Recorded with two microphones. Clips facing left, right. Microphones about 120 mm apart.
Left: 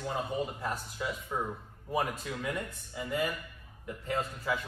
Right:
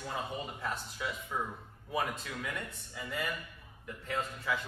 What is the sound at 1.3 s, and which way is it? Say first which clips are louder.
Speech: left 2 dB; 20° left (ahead or behind).